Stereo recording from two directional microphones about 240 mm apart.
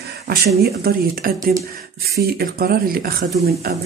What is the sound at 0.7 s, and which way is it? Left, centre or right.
Speech, right.